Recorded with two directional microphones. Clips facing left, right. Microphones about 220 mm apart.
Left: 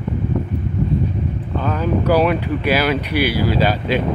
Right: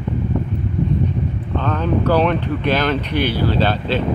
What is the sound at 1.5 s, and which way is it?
Speech, 10° left (ahead or behind).